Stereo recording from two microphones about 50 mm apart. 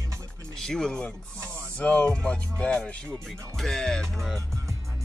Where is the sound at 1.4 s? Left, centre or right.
Right.